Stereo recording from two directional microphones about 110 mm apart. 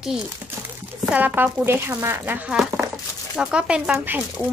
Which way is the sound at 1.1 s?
15° right (ahead or behind).